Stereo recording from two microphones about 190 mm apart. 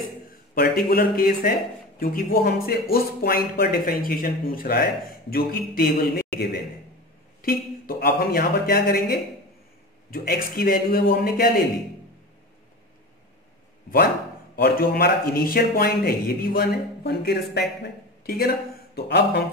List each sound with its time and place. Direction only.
0.6 s a man's voice: 50° left (ahead or behind)
14.5 s a man's voice: 50° left (ahead or behind)